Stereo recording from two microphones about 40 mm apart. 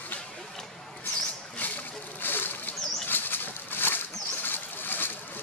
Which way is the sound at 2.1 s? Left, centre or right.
Left.